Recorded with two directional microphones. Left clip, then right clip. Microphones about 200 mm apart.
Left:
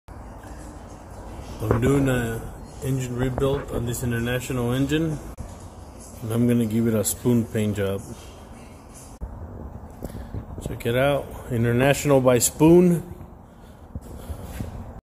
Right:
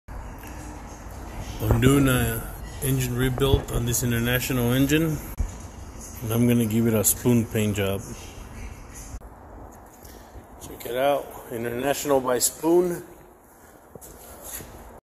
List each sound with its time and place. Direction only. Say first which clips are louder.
1.8 s speech: right 2 dB; 5° right (ahead or behind)
2.8 s speech: right 1 dB; 20° right (ahead or behind)
6.2 s speech: even; centre (ahead or behind)
10.6 s speech: left 2 dB; 5° right (ahead or behind)